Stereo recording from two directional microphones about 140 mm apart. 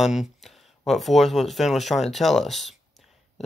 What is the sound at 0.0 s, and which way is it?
Speech, centre (ahead or behind).